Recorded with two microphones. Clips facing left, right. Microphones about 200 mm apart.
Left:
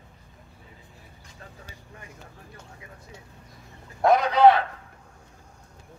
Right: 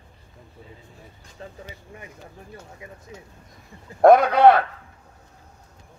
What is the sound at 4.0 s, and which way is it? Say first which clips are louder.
Speech: right 4 dB; 55° right (ahead or behind).